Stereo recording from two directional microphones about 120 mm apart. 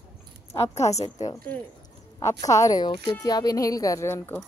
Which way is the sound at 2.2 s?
25° left (ahead or behind).